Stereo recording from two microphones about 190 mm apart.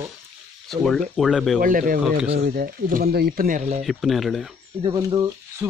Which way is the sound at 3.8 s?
Centre (ahead or behind).